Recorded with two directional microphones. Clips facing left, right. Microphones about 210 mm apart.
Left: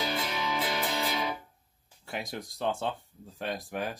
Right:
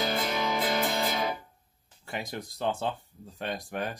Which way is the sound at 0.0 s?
45° right (ahead or behind).